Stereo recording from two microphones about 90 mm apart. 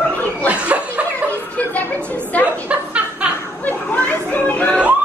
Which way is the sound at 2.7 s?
15° right (ahead or behind).